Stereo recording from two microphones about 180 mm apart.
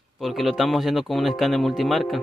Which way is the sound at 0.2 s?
Centre (ahead or behind).